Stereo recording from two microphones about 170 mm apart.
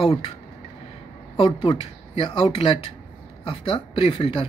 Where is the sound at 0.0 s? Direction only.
30° left (ahead or behind).